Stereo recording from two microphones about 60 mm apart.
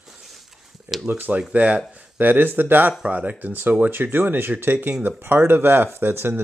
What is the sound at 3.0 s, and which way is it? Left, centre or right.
Speech, right.